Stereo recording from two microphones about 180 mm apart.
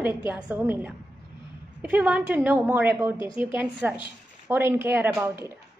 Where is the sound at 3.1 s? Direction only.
25° left (ahead or behind).